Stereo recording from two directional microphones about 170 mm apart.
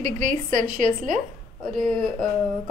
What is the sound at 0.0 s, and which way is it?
A woman's voice, 50° right (ahead or behind).